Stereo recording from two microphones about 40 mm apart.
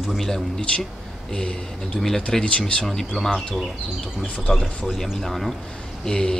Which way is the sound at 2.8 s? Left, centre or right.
Centre.